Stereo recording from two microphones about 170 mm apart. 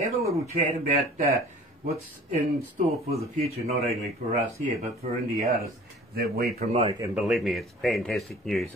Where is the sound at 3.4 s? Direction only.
40° right (ahead or behind).